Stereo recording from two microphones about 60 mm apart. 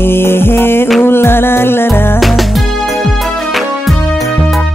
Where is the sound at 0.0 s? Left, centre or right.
Left.